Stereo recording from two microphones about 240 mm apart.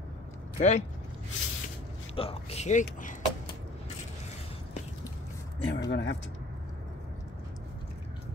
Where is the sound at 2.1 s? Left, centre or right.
Left.